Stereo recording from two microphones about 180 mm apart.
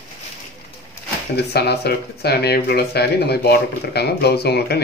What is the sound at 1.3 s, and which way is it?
Speech, 65° left (ahead or behind).